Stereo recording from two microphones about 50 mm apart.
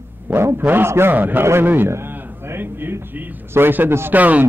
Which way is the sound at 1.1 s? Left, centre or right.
Right.